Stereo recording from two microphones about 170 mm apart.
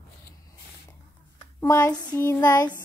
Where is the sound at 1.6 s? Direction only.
15° left (ahead or behind).